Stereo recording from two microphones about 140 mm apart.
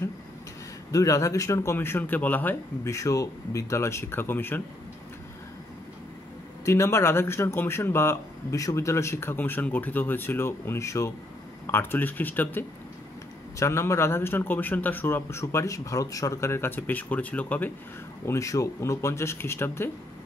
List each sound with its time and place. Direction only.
0.9 s speech: 25° left (ahead or behind)
6.6 s speech: 20° left (ahead or behind)